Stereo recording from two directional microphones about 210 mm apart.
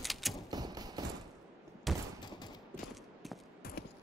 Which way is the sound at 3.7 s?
45° left (ahead or behind).